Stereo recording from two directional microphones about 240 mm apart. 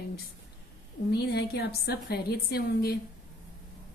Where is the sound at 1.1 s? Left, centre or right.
Left.